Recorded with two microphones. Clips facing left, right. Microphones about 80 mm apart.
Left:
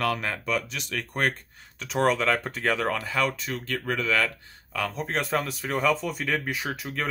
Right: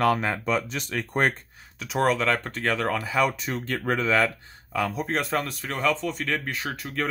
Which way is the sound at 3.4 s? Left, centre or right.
Right.